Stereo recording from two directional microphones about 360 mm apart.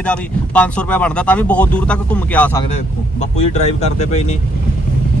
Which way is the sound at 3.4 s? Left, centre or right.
Centre.